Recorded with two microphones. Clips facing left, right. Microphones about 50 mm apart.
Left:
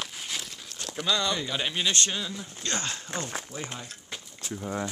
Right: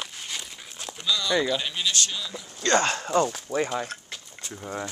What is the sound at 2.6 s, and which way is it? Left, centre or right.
Speech, right.